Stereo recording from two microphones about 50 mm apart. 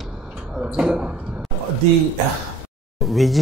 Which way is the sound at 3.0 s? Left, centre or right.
Centre.